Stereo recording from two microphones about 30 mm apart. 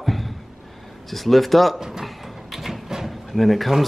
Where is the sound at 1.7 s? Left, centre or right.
Centre.